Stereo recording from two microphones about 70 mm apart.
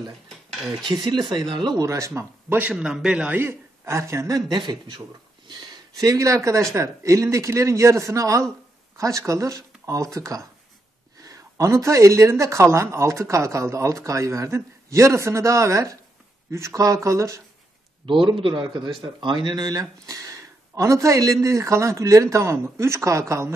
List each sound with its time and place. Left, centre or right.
0.5 s speech: centre
0.8 s speech: right
1.8 s speech: right
2.7 s a man's voice: centre
3.3 s speech: right
4.5 s speech: right
5.9 s speech: right
18.5 s speech: right